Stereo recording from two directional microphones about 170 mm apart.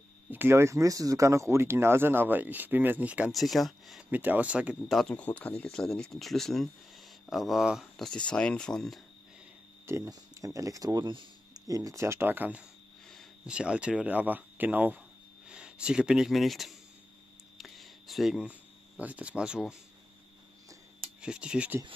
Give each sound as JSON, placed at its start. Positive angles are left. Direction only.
{"t": 0.3, "sound": "speech", "side_deg": -15}
{"t": 9.8, "sound": "speech", "side_deg": -20}
{"t": 17.6, "sound": "a sound", "side_deg": 0}
{"t": 21.2, "sound": "speech", "side_deg": -5}